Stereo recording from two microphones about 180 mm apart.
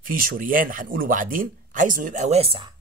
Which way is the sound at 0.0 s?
50° right (ahead or behind).